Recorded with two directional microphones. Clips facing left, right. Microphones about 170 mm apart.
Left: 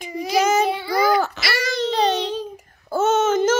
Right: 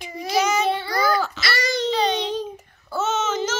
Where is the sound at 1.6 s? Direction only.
Centre (ahead or behind).